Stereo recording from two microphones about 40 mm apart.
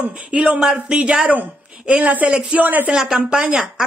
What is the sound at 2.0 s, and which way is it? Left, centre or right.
Speech, right.